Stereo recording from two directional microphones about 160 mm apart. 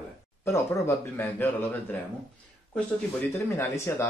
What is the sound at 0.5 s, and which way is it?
Speech, 15° left (ahead or behind).